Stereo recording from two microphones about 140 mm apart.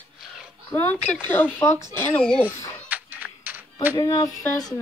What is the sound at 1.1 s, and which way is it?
Speech, 10° left (ahead or behind).